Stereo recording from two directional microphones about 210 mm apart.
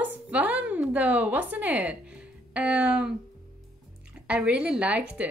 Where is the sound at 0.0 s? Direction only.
5° right (ahead or behind).